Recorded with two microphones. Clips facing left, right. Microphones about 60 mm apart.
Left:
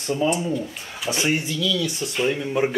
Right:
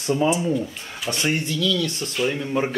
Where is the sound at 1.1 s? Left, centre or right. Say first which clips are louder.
Left 1 dB; centre.